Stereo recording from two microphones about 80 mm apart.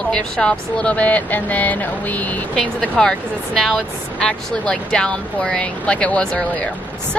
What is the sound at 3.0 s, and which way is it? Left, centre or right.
Speech, centre.